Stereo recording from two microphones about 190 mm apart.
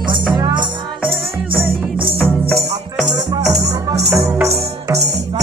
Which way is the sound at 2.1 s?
Centre (ahead or behind).